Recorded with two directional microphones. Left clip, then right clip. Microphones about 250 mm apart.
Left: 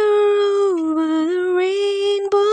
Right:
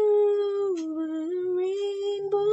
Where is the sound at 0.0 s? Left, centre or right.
Left.